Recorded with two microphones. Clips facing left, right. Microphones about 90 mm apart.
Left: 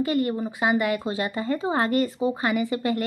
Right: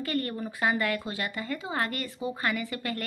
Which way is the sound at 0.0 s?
20° left (ahead or behind).